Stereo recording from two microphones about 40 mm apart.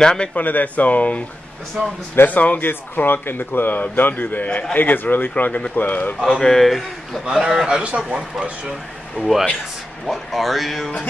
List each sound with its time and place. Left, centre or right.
0.0 s speech: centre
0.3 s speech: left
2.2 s speech: left
2.7 s speech: left
6.3 s speech: centre
7.2 s a man's voice: centre
9.2 s speech: centre